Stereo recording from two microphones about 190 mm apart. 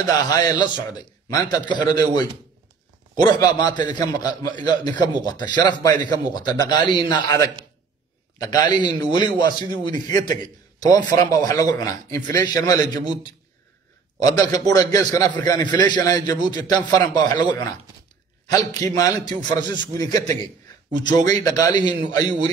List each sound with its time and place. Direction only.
0.0 s a man's voice: 20° left (ahead or behind)
14.2 s a man's voice: 20° left (ahead or behind)